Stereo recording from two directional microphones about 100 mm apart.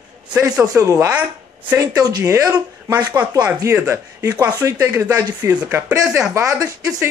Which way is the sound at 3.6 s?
25° right (ahead or behind).